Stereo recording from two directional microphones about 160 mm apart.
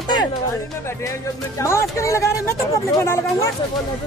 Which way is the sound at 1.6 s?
15° left (ahead or behind).